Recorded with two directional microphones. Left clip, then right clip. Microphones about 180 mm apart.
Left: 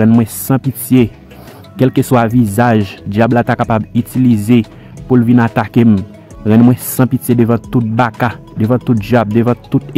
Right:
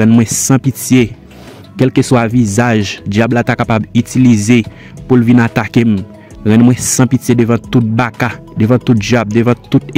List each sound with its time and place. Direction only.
0.1 s speech: 25° right (ahead or behind)
3.9 s speech: 25° right (ahead or behind)